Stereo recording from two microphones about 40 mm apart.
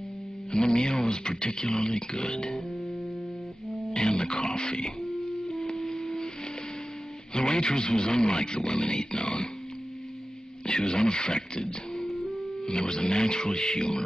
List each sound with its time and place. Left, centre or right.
0.5 s speech: centre
3.9 s speech: centre
5.0 s music: centre
5.7 s a sound: centre
7.3 s speech: centre
10.7 s speech: centre
11.6 s music: centre
12.6 s speech: left